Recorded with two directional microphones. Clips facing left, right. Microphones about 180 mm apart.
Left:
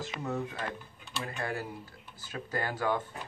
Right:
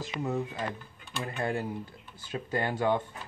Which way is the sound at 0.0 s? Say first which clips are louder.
Right 3 dB; 15° right (ahead or behind).